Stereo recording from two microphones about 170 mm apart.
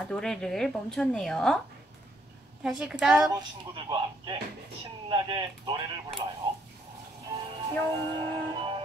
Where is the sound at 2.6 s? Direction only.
5° right (ahead or behind).